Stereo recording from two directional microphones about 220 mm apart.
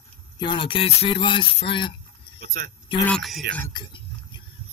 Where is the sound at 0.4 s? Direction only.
20° left (ahead or behind).